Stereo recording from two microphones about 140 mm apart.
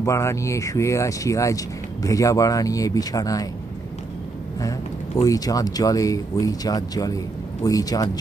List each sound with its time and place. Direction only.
0.0 s speech: 20° left (ahead or behind)
4.6 s speech: 25° left (ahead or behind)